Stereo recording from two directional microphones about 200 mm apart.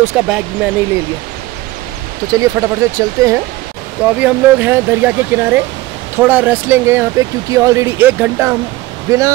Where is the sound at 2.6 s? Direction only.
10° right (ahead or behind).